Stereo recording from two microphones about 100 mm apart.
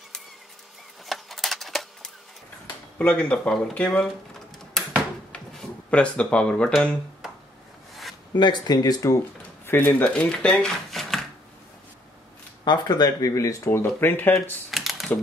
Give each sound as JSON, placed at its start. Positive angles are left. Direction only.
{"t": 1.0, "sound": "a sound", "side_deg": 0}
{"t": 3.0, "sound": "speech", "side_deg": 15}
{"t": 5.3, "sound": "a sound", "side_deg": 10}
{"t": 7.9, "sound": "zipper", "side_deg": 0}
{"t": 8.4, "sound": "speech", "side_deg": 45}
{"t": 9.7, "sound": "speech", "side_deg": 20}
{"t": 12.6, "sound": "speech", "side_deg": 45}
{"t": 13.7, "sound": "speech", "side_deg": 25}
{"t": 14.7, "sound": "typing", "side_deg": 0}